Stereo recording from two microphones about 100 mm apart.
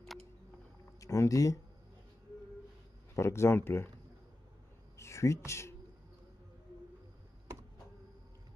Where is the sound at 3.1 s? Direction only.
25° left (ahead or behind).